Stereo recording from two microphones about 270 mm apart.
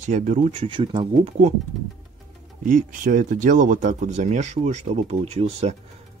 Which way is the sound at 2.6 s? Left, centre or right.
Right.